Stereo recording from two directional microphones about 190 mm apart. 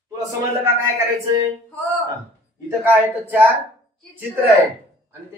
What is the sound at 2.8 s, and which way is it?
Speech, 10° right (ahead or behind).